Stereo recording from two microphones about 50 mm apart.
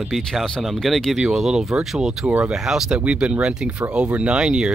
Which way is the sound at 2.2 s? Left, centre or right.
Right.